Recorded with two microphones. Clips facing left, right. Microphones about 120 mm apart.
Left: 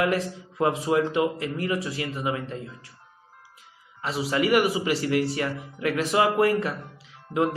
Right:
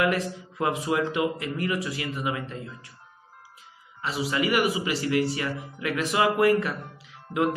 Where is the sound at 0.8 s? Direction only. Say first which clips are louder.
Left 2 dB; 35° left (ahead or behind).